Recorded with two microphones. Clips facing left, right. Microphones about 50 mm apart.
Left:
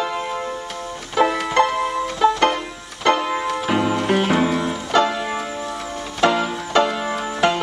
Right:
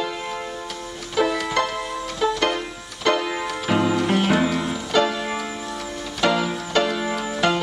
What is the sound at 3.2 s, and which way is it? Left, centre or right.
Music, centre.